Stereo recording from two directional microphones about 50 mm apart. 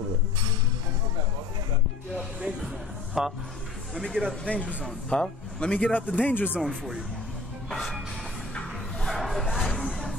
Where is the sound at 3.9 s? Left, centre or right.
Centre; by 6.0 s left.